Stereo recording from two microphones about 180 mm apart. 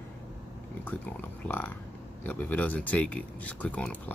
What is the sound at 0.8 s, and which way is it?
Speech, 10° left (ahead or behind).